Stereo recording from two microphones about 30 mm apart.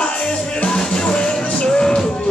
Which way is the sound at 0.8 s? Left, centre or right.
Left.